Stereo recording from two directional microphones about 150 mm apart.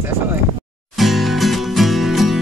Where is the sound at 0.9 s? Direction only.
Centre (ahead or behind).